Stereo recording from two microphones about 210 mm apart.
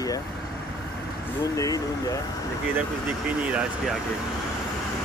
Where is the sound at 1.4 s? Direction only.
15° left (ahead or behind).